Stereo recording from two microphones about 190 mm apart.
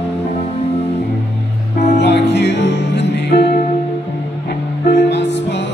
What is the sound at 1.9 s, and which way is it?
Music, 65° left (ahead or behind).